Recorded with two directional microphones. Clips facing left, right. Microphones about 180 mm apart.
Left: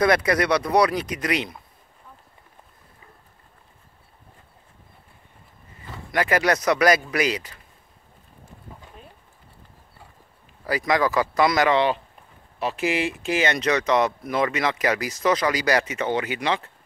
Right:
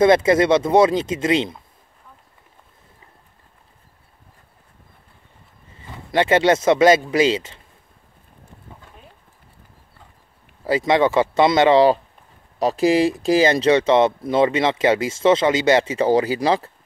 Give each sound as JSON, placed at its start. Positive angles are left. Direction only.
{"t": 0.0, "sound": "speech", "side_deg": -25}
{"t": 5.8, "sound": "speech", "side_deg": -25}
{"t": 10.6, "sound": "speech", "side_deg": -25}